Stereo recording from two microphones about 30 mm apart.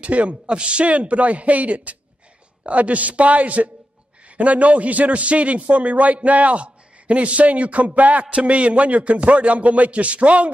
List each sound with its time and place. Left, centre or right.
0.0 s a man's voice: right
0.5 s a man's voice: right